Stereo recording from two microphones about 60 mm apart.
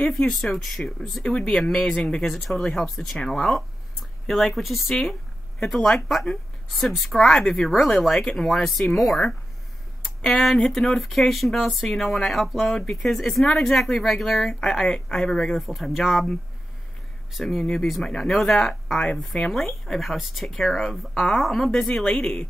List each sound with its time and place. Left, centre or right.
0.1 s speech: centre
1.2 s speech: centre
1.5 s speech: centre
7.2 s speech: centre
17.3 s speech: centre
21.7 s speech: centre